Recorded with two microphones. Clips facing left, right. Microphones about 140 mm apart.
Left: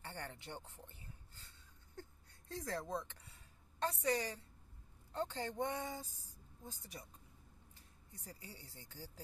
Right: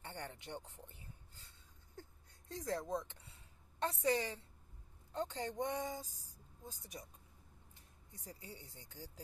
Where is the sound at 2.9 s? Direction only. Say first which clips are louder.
Right 2 dB; 20° right (ahead or behind).